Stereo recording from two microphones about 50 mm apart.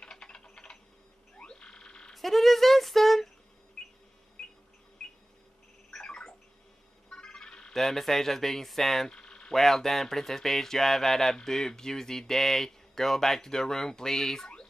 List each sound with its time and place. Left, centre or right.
0.0 s typing: centre
1.4 s frog: centre
2.1 s speech: centre
3.8 s a sound: centre
5.0 s a sound: centre
7.1 s music: centre
7.7 s speech: centre
9.1 s speech: centre